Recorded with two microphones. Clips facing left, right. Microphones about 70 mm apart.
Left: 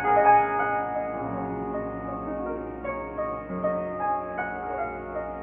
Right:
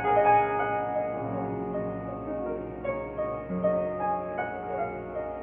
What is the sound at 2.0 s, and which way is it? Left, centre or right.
Music, left.